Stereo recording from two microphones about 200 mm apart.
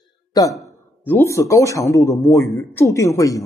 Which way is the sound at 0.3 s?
15° left (ahead or behind).